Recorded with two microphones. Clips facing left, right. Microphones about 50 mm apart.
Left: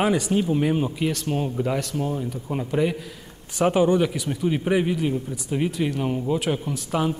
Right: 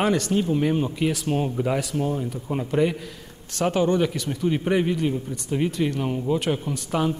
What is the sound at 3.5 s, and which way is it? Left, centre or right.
Speech, centre.